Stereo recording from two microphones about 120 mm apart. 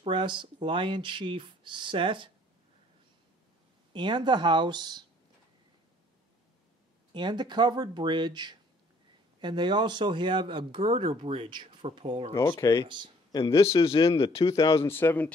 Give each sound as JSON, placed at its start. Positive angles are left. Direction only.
{"t": 0.1, "sound": "speech", "side_deg": -40}
{"t": 3.9, "sound": "speech", "side_deg": -40}
{"t": 7.1, "sound": "speech", "side_deg": -40}
{"t": 12.4, "sound": "speech", "side_deg": 25}
{"t": 12.8, "sound": "speech", "side_deg": -40}
{"t": 13.3, "sound": "speech", "side_deg": 45}
{"t": 14.8, "sound": "speech", "side_deg": 20}